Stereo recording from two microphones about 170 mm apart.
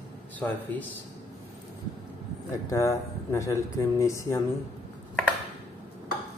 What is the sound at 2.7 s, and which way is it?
Speech, 15° left (ahead or behind).